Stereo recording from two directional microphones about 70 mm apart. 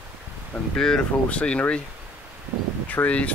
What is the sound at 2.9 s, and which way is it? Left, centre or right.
Speech, left.